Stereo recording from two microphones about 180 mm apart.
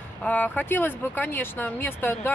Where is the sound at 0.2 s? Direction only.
10° left (ahead or behind).